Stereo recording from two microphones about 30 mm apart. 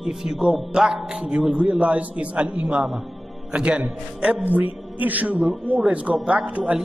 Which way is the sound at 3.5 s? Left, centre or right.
Right.